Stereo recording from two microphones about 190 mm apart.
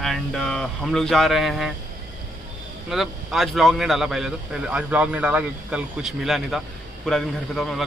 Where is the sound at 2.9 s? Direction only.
Centre (ahead or behind).